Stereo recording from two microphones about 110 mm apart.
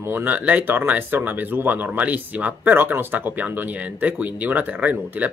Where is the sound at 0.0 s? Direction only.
20° right (ahead or behind).